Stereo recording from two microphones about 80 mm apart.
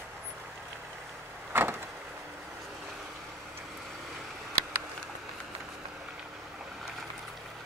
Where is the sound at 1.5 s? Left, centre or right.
Right.